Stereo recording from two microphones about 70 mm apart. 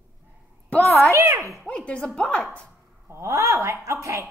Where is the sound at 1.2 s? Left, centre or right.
Right.